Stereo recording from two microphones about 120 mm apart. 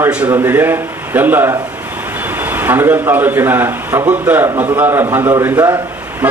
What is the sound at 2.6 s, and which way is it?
A man's voice, 15° right (ahead or behind).